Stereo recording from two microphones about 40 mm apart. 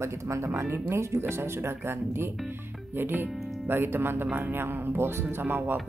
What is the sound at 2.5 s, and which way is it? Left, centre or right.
Speech, right.